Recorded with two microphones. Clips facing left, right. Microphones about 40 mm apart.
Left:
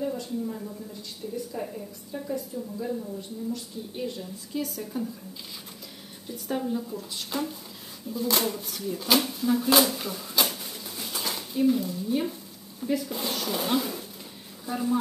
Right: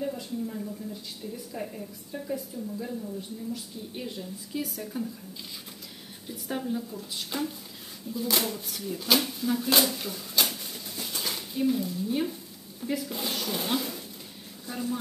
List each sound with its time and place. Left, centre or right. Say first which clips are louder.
0.0 s a woman's voice: left 2 dB; centre
6.2 s speech: left 3 dB; centre
11.0 s a sound: left 1 dB; centre
12.8 s speech: left 3 dB; centre